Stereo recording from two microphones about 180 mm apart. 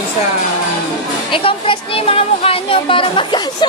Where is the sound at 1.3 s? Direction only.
30° left (ahead or behind).